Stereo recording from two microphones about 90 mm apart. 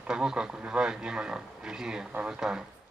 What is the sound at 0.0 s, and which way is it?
Speech, 10° right (ahead or behind).